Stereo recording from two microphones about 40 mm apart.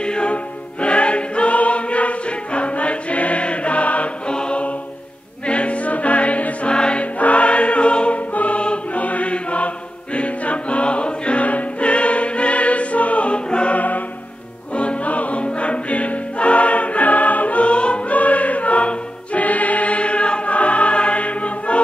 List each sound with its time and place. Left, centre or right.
0.0 s music: left
4.3 s choir: left
5.5 s music: left
6.7 s music: left
7.2 s choir: left
10.1 s music: left
13.7 s music: left
14.8 s music: left